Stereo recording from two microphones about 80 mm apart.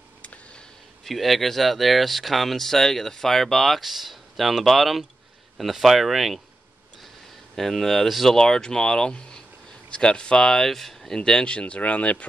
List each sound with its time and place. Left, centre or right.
0.2 s a sound: centre
1.0 s speech: centre
7.5 s speech: centre